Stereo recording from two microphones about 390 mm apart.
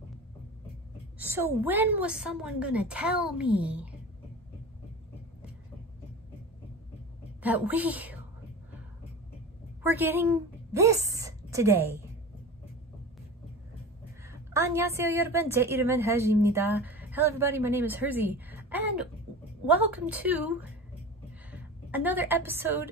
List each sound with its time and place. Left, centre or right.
1.1 s a woman's voice: centre
7.4 s a woman's voice: centre
9.8 s a woman's voice: centre
14.2 s a woman's voice: centre